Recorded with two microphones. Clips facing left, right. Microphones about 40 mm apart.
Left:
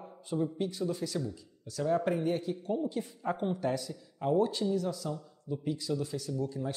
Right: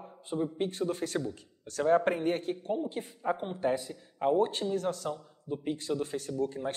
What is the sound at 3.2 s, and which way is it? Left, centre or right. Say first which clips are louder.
Speech: right 2 dB; centre.